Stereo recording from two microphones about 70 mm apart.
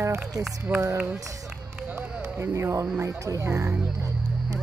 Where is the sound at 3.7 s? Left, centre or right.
Centre.